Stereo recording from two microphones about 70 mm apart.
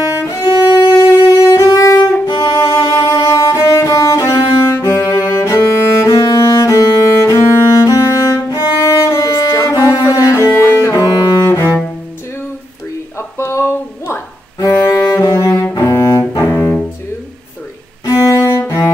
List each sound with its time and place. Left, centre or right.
0.2 s music: left
2.2 s music: left
2.5 s music: left
9.9 s cello: left
10.3 s cello: left
13.4 s a sound: left
14.6 s music: left
15.2 s cello: left
18.0 s music: left